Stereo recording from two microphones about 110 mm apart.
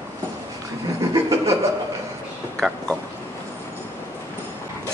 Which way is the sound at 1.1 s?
30° right (ahead or behind).